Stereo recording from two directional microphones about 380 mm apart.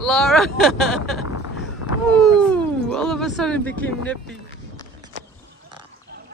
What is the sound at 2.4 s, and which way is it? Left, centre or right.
Speech, centre.